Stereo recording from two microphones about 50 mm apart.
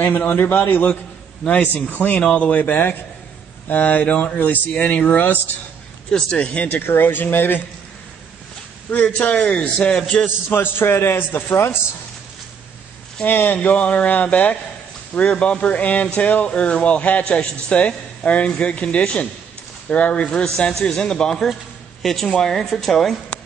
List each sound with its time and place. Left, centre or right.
0.3 s a man's voice: left
9.0 s a man's voice: left
10.2 s a man's voice: left
13.2 s a man's voice: left; by 23.1 s centre